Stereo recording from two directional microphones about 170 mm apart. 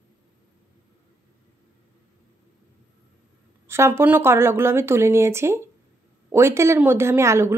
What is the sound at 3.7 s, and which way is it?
Speech, 15° right (ahead or behind).